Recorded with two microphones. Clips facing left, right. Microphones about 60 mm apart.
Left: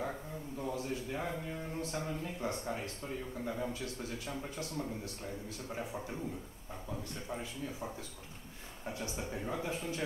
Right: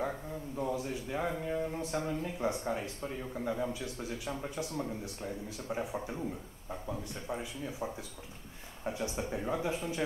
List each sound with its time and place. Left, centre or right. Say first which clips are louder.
0.6 s a man's voice: right 3 dB; centre